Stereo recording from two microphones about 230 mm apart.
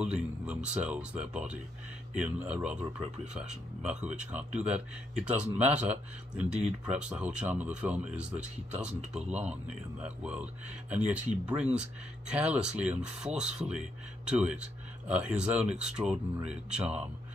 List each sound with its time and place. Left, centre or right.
0.0 s speech: centre